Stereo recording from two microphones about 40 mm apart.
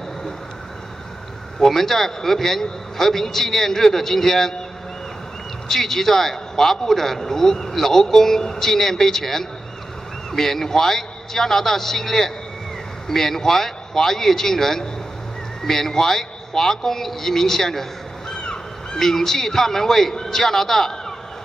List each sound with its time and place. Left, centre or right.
1.6 s a man's voice: centre
5.7 s a man's voice: centre
18.3 s a sound: left
18.9 s a man's voice: centre